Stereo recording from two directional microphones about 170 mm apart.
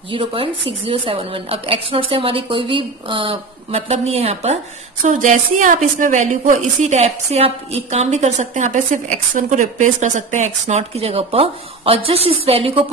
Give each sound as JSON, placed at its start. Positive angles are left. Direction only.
{"t": 0.1, "sound": "a woman's voice", "side_deg": -30}